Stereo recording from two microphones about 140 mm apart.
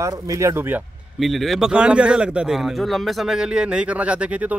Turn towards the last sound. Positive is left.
turn(degrees=-10)  # may be behind; listen again after turning